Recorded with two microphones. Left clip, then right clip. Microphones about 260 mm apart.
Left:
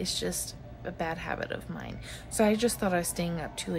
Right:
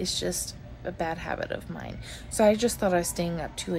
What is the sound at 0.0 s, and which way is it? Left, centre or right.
Speech, centre.